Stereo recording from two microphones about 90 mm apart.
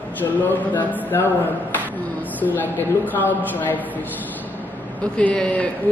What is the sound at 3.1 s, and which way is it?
Speech, 20° left (ahead or behind).